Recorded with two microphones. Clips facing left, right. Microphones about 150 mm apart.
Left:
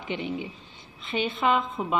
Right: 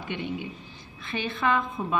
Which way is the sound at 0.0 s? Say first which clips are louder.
Left 1 dB; 15° left (ahead or behind).